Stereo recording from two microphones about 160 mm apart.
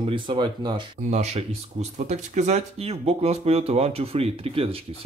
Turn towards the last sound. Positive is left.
turn(degrees=-35)  # may be behind; listen again after turning